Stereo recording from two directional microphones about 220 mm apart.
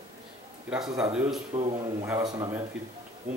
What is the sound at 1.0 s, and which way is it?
Speech, 5° right (ahead or behind).